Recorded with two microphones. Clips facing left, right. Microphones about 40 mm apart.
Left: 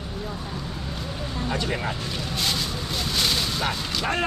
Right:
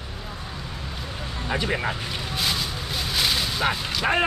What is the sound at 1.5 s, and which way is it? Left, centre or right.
Speech, centre.